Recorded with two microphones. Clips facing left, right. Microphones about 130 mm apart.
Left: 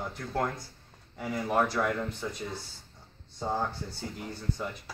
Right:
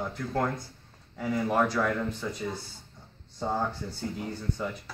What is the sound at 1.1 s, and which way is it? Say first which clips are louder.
Speech: right 2 dB; 5° left (ahead or behind).